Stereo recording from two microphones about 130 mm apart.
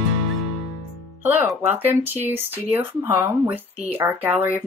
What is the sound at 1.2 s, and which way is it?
Speech, 15° right (ahead or behind).